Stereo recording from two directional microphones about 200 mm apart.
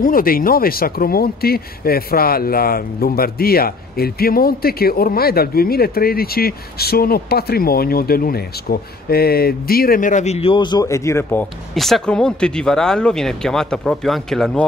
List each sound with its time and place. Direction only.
0.0 s speech: 45° left (ahead or behind); by 11.4 s 15° left (ahead or behind)
11.7 s speech: centre (ahead or behind)